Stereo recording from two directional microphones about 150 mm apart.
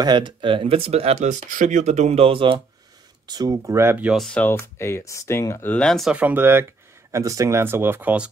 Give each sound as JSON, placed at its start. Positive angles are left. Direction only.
{"t": 0.0, "sound": "speech", "side_deg": -30}
{"t": 6.1, "sound": "speech", "side_deg": -10}